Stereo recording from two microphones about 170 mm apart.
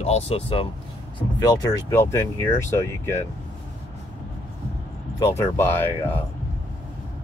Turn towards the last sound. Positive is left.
turn(degrees=10)  # may be behind; listen again after turning